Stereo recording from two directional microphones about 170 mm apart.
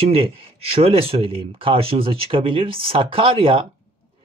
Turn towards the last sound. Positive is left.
turn(degrees=-30)  # may be behind; listen again after turning